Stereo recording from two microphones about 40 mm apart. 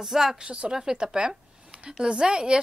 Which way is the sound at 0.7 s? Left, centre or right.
Centre.